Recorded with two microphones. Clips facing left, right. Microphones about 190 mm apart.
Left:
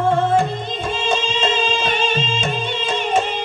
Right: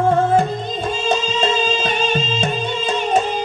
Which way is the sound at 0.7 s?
40° right (ahead or behind).